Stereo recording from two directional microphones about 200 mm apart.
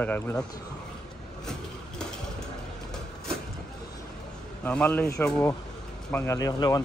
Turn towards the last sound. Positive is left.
turn(degrees=15)  # may be behind; listen again after turning